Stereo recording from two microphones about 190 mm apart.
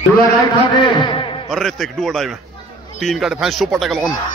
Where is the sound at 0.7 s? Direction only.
25° left (ahead or behind).